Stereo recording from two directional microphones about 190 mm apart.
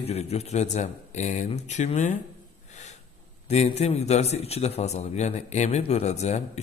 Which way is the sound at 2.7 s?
40° left (ahead or behind).